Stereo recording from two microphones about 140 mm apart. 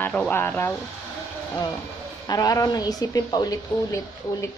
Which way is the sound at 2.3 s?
25° left (ahead or behind).